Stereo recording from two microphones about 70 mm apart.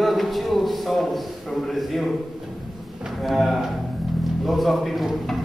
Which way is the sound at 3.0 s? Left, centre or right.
Centre.